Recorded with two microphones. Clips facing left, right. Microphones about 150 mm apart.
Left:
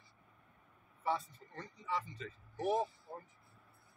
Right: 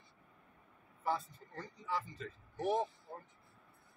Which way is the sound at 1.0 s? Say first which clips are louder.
Even; centre (ahead or behind).